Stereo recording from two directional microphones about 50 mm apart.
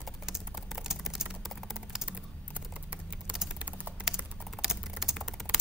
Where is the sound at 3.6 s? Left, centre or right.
Right.